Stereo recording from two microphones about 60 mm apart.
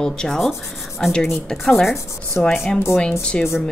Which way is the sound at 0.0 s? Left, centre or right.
Centre.